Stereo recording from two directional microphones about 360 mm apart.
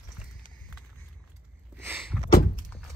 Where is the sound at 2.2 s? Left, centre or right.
Left.